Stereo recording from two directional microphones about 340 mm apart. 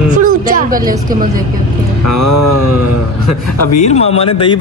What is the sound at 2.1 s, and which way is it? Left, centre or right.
Music, left.